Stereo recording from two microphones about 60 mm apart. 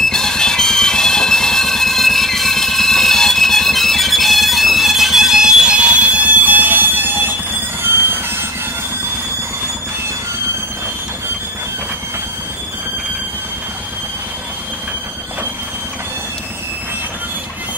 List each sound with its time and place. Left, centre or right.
0.0 s music: centre; by 7.3 s right
7.8 s train: right